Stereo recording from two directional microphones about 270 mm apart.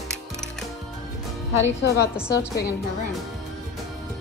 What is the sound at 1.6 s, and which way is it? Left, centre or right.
Speech, left.